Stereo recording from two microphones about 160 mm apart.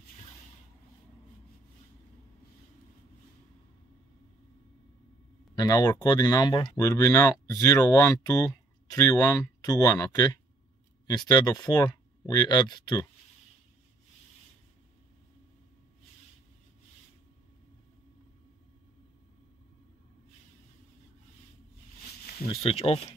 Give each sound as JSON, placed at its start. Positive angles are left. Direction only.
{"t": 5.6, "sound": "speech", "side_deg": 25}
{"t": 22.5, "sound": "speech", "side_deg": 35}